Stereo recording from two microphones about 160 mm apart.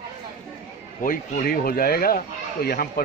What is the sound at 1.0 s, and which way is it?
Speech, 65° left (ahead or behind).